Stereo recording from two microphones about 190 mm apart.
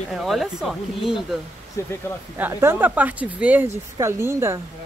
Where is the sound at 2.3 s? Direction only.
10° right (ahead or behind).